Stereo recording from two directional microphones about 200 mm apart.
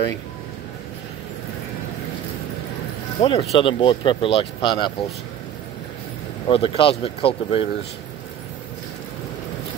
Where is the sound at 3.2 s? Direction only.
25° left (ahead or behind).